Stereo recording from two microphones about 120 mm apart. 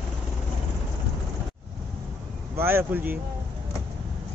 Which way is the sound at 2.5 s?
20° right (ahead or behind).